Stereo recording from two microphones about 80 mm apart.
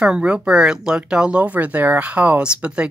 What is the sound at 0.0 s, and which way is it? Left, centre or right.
Speech, centre.